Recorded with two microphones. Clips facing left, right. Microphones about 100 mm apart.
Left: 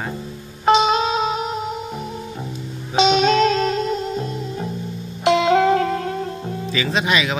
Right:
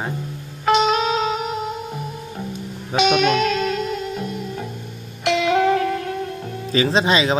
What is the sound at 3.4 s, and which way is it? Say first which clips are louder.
Music: left 3 dB; 30° left (ahead or behind).